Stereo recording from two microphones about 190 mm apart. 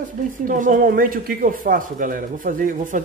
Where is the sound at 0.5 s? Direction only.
45° right (ahead or behind).